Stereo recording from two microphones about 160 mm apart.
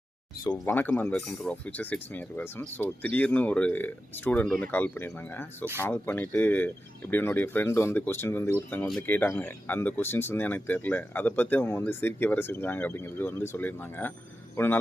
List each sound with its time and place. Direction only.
0.7 s speech: 10° left (ahead or behind)